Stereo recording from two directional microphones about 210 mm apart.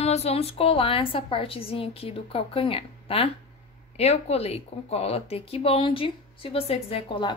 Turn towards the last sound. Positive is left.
turn(degrees=25)  # may be behind; listen again after turning